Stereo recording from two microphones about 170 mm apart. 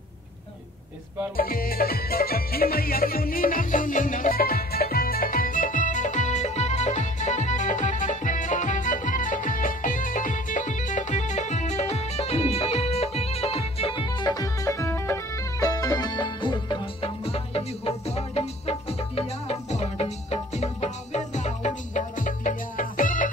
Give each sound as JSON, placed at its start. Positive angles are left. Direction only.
{"t": 1.3, "sound": "music", "side_deg": 60}